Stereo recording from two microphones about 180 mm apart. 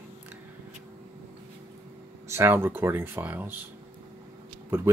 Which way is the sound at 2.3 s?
15° right (ahead or behind).